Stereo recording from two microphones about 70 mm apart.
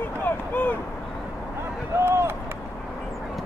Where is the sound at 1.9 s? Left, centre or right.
Right.